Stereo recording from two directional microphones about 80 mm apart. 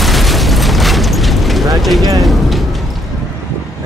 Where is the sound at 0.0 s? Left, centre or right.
Centre.